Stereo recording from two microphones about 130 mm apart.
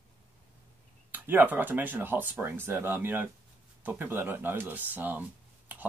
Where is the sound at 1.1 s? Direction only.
15° right (ahead or behind).